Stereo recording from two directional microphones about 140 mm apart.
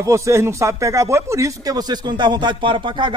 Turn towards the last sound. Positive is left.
turn(degrees=-35)  # may be behind; listen again after turning